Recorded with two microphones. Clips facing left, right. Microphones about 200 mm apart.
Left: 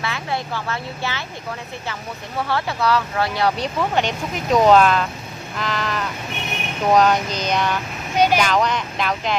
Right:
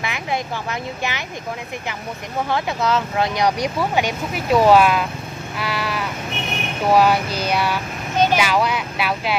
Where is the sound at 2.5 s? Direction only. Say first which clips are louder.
Even; 15° right (ahead or behind).